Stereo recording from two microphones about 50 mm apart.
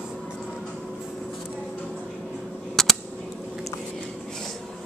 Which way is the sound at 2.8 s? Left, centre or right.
Centre.